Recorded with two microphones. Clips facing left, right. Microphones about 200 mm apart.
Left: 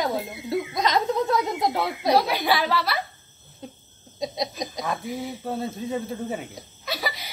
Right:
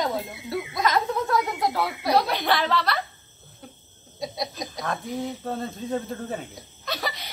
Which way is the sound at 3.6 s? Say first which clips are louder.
Left 5 dB; 20° left (ahead or behind).